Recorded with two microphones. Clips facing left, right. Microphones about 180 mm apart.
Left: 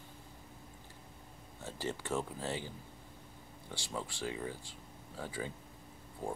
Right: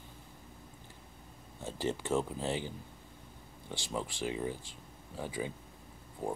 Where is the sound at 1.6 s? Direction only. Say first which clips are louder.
Right 5 dB; 20° right (ahead or behind).